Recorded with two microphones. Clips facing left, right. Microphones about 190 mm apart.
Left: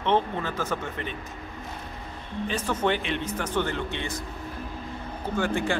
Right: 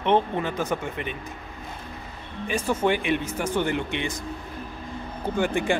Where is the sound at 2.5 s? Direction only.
10° right (ahead or behind).